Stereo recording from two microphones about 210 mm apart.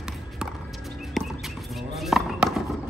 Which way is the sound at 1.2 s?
Centre (ahead or behind).